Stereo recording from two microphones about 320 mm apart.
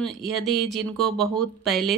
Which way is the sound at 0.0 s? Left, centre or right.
Centre.